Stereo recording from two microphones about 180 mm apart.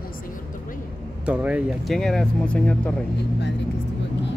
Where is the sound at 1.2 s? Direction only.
5° right (ahead or behind).